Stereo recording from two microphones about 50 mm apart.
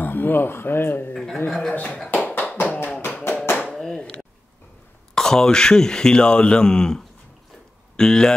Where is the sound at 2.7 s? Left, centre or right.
Left.